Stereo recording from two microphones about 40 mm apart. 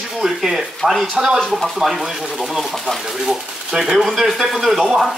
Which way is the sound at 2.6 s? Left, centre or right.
Centre.